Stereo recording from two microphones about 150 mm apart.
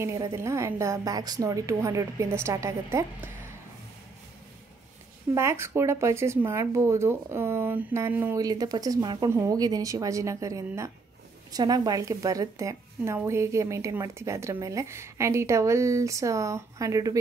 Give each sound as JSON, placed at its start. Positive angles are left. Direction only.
{"t": 0.0, "sound": "a woman's voice", "side_deg": -20}
{"t": 5.3, "sound": "speech", "side_deg": -20}
{"t": 8.5, "sound": "a woman's voice", "side_deg": -25}